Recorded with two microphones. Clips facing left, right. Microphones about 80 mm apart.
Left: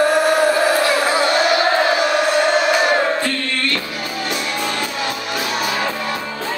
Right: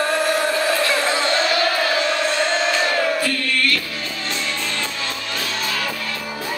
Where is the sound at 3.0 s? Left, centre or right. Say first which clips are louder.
Left 2 dB; left.